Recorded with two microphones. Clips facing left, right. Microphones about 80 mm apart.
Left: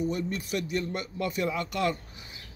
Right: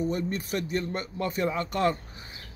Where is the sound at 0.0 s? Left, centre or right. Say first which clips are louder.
Right 1 dB; right.